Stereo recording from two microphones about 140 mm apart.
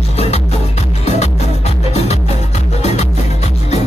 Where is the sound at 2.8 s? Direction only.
50° left (ahead or behind).